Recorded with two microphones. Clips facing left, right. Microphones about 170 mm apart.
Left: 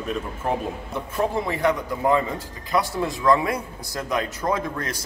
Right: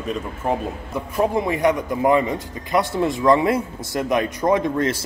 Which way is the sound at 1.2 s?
15° right (ahead or behind).